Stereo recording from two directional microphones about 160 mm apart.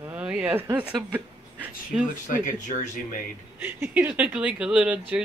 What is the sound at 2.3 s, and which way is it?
Speech, 55° left (ahead or behind).